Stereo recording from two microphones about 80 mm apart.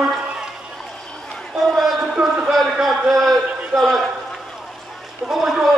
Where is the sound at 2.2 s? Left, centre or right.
Centre.